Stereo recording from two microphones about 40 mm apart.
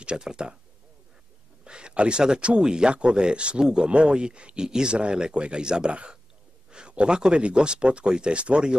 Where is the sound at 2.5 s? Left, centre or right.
Right.